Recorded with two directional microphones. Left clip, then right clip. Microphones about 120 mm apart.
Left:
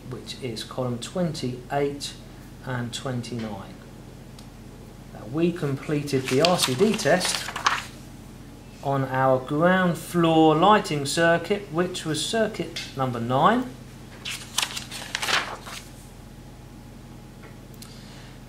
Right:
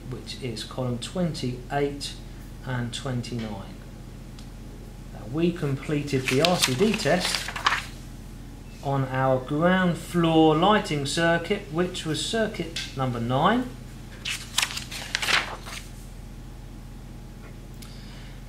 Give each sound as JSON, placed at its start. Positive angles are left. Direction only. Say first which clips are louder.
{"t": 0.1, "sound": "speech", "louder": "left 1 dB", "side_deg": 15}
{"t": 5.3, "sound": "speech", "louder": "left 1 dB", "side_deg": 15}
{"t": 6.2, "sound": "speech", "louder": "left 1 dB", "side_deg": -5}
{"t": 7.0, "sound": "speech", "louder": "left 2 dB", "side_deg": 10}
{"t": 7.2, "sound": "a sound", "louder": "even", "side_deg": -5}
{"t": 8.8, "sound": "speech", "louder": "left 3 dB", "side_deg": 15}
{"t": 14.2, "sound": "a sound", "louder": "right 1 dB", "side_deg": -5}